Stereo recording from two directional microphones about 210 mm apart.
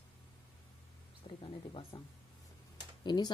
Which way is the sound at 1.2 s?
25° left (ahead or behind).